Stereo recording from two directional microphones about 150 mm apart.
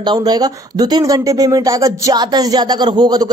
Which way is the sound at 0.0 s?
30° right (ahead or behind).